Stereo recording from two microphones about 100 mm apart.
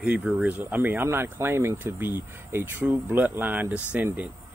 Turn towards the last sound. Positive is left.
turn(degrees=-15)  # may be behind; listen again after turning